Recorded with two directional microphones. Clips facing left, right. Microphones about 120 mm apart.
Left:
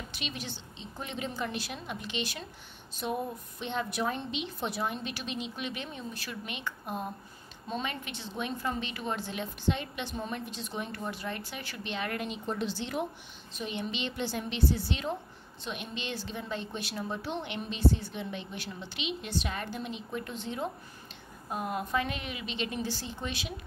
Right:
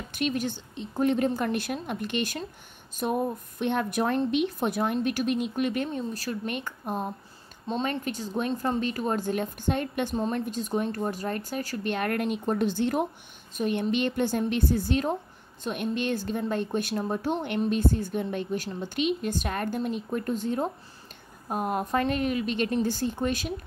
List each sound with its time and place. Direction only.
0.1 s a woman's voice: 50° right (ahead or behind)
10.1 s a woman's voice: 35° right (ahead or behind)